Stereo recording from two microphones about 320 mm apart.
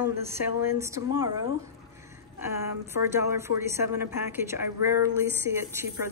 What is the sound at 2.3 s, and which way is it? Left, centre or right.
A woman's voice, centre.